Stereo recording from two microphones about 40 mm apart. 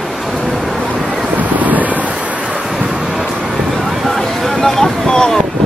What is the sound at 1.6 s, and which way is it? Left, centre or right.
Wind, right.